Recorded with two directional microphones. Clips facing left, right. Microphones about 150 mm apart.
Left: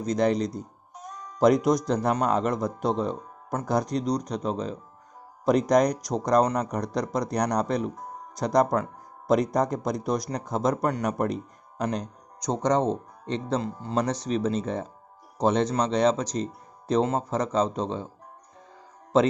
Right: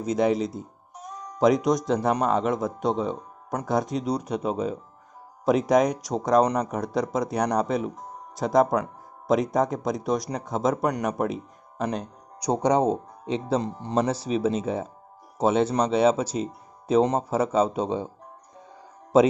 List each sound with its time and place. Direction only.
0.0 s a man's voice: 5° right (ahead or behind)
13.6 s speech: 20° right (ahead or behind)
13.9 s speech: 5° right (ahead or behind)